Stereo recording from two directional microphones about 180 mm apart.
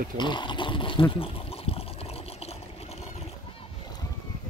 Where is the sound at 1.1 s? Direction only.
30° left (ahead or behind).